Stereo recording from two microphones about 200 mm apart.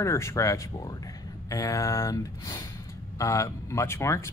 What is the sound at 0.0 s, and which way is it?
Speech, 15° left (ahead or behind).